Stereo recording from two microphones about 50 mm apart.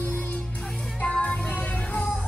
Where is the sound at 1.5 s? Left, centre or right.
Left.